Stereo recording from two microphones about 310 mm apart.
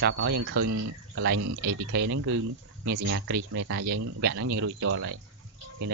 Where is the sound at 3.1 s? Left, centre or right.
Right.